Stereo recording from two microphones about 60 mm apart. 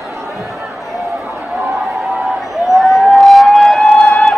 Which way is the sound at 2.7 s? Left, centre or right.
Centre.